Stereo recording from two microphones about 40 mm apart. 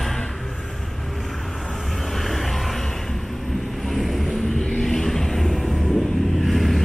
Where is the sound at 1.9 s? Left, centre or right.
Centre.